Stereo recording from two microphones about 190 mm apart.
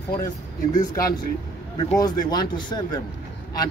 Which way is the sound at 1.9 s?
20° left (ahead or behind).